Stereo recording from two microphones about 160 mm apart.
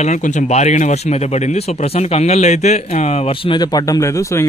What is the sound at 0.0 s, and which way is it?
Speech, 45° left (ahead or behind).